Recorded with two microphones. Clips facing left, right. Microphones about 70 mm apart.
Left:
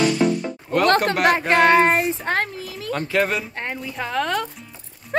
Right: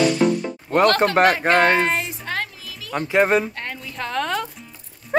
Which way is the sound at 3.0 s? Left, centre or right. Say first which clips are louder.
Right 3 dB; right.